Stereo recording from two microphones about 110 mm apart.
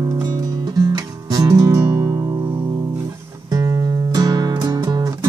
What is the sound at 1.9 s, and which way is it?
Music, 25° right (ahead or behind).